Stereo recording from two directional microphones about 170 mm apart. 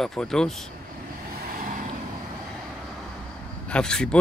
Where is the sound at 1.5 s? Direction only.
50° right (ahead or behind).